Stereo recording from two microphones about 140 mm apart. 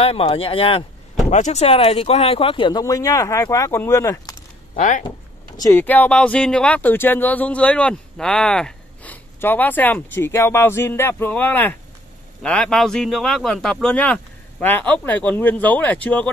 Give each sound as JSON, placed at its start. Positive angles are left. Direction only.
{"t": 0.0, "sound": "speech", "side_deg": 45}
{"t": 1.3, "sound": "speech", "side_deg": 55}
{"t": 2.8, "sound": "speech", "side_deg": 25}
{"t": 4.7, "sound": "speech", "side_deg": 65}
{"t": 5.6, "sound": "speech", "side_deg": 20}